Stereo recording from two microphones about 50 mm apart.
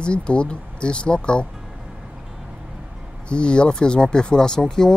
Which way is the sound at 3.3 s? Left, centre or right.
Centre.